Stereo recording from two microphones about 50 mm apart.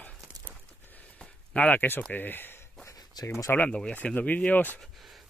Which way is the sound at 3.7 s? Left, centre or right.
Centre.